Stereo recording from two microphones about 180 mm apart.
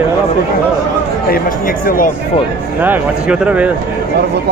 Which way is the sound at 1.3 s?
50° left (ahead or behind).